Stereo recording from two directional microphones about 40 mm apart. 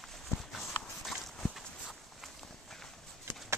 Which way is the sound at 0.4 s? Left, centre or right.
Centre.